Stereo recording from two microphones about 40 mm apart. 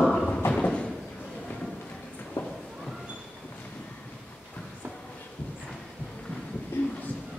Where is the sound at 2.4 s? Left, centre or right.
Left.